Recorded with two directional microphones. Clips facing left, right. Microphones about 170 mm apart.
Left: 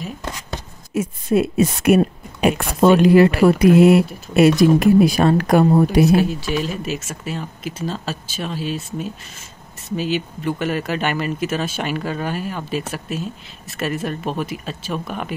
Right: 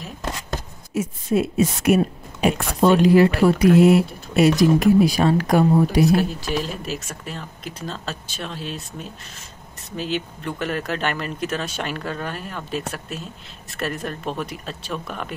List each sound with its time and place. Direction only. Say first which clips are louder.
0.9 s speech: left 3 dB; 60° left (ahead or behind)
6.0 s speech: left 3 dB; centre (ahead or behind)